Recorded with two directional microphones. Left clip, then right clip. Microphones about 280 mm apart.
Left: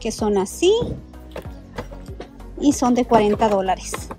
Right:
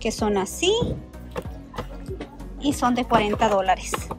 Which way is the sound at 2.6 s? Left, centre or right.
Left.